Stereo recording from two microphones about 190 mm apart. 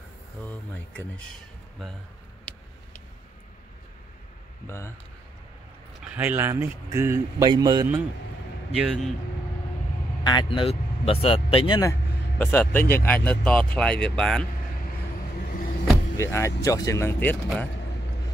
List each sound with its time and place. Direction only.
0.5 s speech: 10° left (ahead or behind)
4.6 s speech: 15° left (ahead or behind)
6.1 s speech: 10° right (ahead or behind)
8.7 s speech: 5° right (ahead or behind)
10.2 s speech: 25° left (ahead or behind); by 14.4 s 5° left (ahead or behind)
15.4 s vehicle: 50° left (ahead or behind)
16.2 s speech: 15° left (ahead or behind)